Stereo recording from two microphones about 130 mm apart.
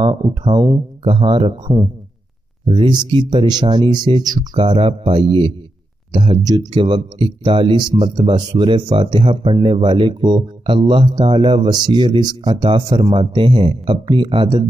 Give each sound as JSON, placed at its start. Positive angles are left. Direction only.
{"t": 0.0, "sound": "speech", "side_deg": -35}